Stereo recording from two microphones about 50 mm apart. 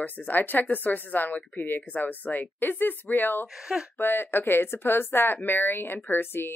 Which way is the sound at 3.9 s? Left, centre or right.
Left.